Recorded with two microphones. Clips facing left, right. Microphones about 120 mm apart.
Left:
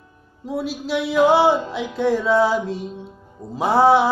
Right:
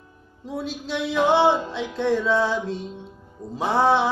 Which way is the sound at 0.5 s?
5° left (ahead or behind).